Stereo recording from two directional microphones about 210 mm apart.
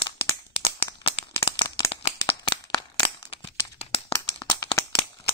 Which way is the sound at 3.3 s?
30° left (ahead or behind).